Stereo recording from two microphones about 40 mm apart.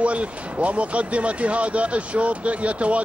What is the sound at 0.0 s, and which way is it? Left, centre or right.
Speech, right.